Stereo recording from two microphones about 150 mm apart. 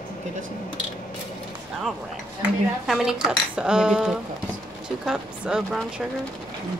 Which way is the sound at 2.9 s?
5° right (ahead or behind).